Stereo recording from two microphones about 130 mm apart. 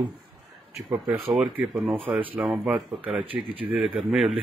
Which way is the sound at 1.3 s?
10° right (ahead or behind).